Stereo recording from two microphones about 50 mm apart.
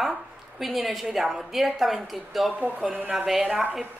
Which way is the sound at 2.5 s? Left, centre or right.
Right.